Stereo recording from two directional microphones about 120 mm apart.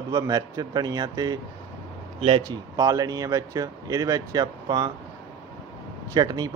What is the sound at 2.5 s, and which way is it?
Speech, 30° right (ahead or behind).